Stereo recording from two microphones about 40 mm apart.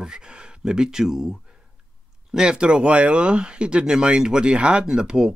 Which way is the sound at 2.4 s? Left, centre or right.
Right.